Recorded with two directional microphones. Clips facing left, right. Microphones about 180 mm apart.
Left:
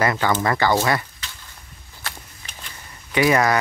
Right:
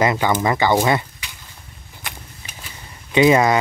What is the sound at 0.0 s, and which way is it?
Speech, 15° right (ahead or behind).